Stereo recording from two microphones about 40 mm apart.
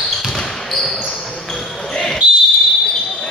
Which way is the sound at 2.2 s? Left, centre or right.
Right.